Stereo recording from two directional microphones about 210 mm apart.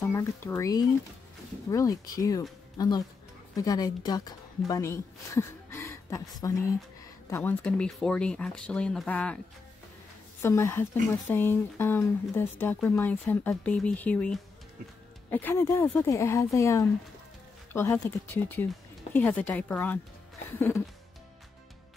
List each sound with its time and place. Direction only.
0.1 s a woman's voice: 10° left (ahead or behind)
7.2 s speech: 10° left (ahead or behind)
10.4 s speech: 15° left (ahead or behind)